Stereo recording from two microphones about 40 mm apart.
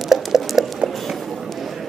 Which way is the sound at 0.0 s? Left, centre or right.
Centre.